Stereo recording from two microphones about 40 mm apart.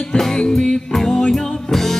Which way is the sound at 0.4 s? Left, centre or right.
Centre.